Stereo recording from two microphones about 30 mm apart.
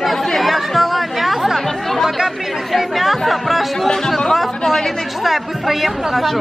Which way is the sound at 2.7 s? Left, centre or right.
Centre.